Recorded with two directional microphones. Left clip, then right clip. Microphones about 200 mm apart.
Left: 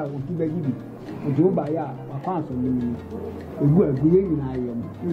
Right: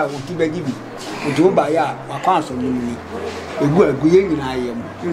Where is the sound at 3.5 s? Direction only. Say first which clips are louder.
Right 6 dB; 15° right (ahead or behind).